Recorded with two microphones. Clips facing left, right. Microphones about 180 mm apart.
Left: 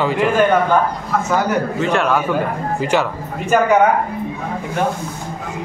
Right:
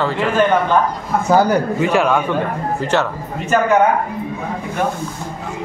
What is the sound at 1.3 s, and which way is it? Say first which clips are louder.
Speech: right 6 dB; 35° right (ahead or behind).